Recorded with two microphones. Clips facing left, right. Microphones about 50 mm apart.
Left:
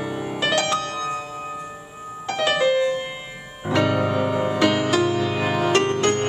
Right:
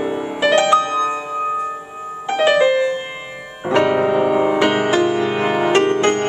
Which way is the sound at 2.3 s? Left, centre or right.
Right.